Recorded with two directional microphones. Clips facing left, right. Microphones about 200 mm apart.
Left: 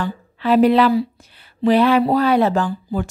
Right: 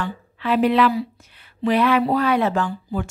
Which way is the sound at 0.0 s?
35° left (ahead or behind).